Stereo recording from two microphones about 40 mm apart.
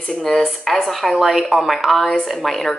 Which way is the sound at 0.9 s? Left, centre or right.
Centre.